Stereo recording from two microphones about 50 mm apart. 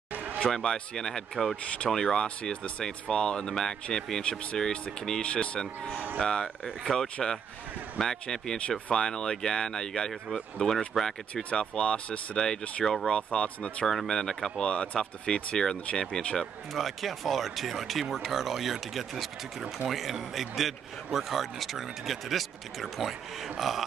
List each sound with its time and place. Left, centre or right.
0.1 s a sound: right
0.5 s speech: centre
5.2 s speech: left
8.5 s speech: left
13.1 s speech: left
13.8 s speech: centre
16.3 s a man's voice: centre